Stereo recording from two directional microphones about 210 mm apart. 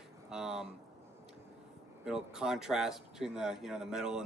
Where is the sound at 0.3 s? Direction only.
5° right (ahead or behind).